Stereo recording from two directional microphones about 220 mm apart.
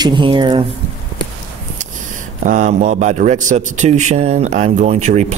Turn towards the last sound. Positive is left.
turn(degrees=-30)  # may be behind; listen again after turning